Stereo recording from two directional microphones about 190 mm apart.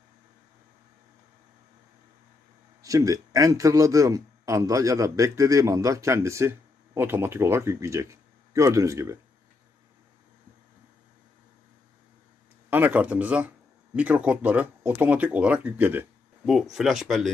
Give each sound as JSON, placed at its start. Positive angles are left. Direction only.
{"t": 2.8, "sound": "a man's voice", "side_deg": -15}
{"t": 12.6, "sound": "a man's voice", "side_deg": -10}